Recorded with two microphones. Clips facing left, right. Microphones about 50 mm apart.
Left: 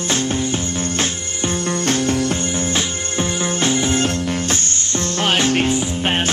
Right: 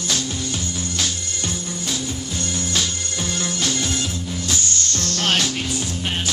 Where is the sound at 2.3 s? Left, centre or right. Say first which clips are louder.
Left 4 dB; left.